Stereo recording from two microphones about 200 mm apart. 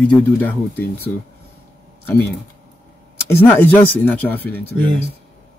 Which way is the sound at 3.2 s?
10° left (ahead or behind).